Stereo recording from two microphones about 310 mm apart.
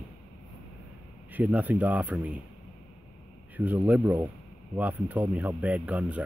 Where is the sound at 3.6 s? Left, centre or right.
Centre.